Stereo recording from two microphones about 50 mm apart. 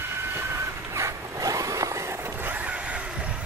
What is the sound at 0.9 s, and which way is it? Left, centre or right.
Zipper, right.